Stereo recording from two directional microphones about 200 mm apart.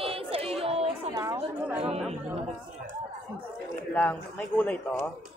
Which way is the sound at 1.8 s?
30° right (ahead or behind).